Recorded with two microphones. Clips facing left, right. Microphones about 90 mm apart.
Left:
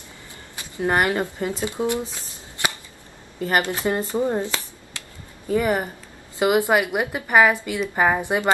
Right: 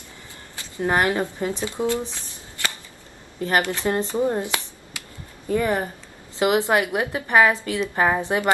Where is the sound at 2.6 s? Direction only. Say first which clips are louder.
Left 3 dB; 20° left (ahead or behind).